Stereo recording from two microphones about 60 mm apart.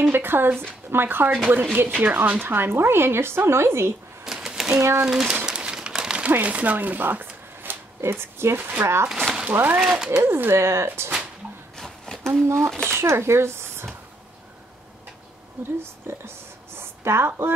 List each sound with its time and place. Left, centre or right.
0.0 s speech: right
4.2 s typewriter: centre
4.7 s speech: right
5.0 s crumpling: centre
6.4 s speech: right
8.0 s speech: right
9.1 s a sound: centre
9.5 s speech: right
9.8 s speech: centre
10.2 s speech: right
11.7 s a sound: centre
12.4 s speech: right
15.8 s a sound: right